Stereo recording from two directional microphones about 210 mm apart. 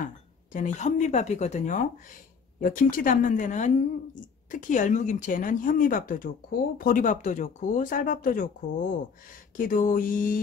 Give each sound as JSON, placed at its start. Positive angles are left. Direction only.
{"t": 0.0, "sound": "a woman's voice", "side_deg": 40}